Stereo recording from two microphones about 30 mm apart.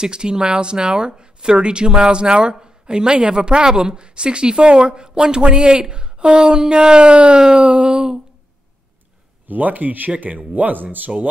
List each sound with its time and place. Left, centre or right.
0.0 s speech: right
9.5 s speech: right